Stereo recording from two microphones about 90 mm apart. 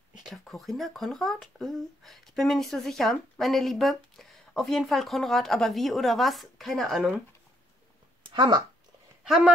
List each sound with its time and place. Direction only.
0.2 s speech: centre (ahead or behind)
8.2 s a sound: 65° right (ahead or behind)
9.2 s speech: 10° right (ahead or behind)